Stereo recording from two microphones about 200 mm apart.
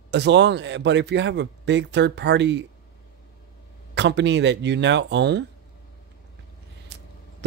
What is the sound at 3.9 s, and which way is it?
Speech, 60° right (ahead or behind).